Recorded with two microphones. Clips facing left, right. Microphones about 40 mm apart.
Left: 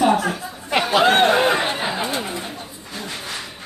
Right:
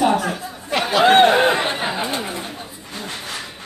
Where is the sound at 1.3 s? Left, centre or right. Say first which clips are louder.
Right 1 dB; centre.